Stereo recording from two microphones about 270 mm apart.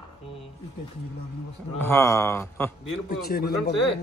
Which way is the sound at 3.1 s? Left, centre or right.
Left.